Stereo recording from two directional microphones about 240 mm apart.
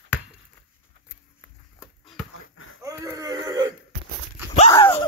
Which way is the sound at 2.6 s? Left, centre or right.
Left.